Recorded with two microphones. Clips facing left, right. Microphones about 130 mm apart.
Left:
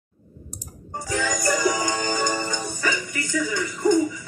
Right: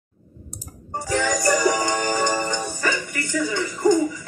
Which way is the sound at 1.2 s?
35° right (ahead or behind).